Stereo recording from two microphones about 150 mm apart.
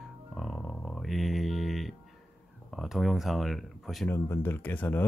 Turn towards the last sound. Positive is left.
turn(degrees=10)  # may be behind; listen again after turning